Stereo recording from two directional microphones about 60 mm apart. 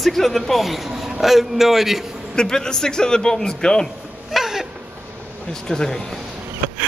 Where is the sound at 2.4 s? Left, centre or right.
Centre.